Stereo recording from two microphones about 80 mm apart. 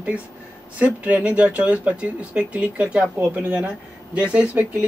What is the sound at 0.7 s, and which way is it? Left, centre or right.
Speech, centre.